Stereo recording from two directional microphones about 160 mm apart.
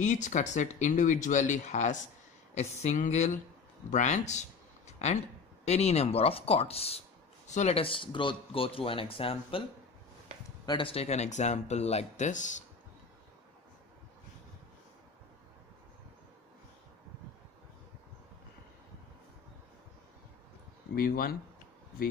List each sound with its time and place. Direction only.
0.0 s speech: 50° left (ahead or behind)
10.6 s speech: 30° left (ahead or behind); by 12.6 s 50° left (ahead or behind)
20.9 s speech: 65° left (ahead or behind)